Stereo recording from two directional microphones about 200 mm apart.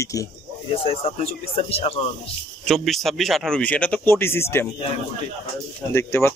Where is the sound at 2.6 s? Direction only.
Centre (ahead or behind).